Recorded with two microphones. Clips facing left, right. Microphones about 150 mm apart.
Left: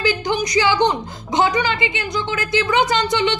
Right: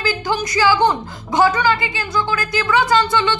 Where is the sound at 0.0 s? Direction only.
20° left (ahead or behind).